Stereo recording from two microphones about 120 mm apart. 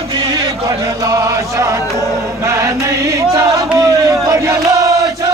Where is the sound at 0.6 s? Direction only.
30° right (ahead or behind).